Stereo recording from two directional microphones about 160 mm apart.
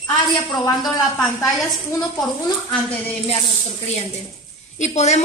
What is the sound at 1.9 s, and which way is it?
Speech, 25° left (ahead or behind).